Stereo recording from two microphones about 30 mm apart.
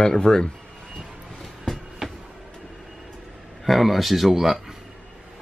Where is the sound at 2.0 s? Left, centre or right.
Right.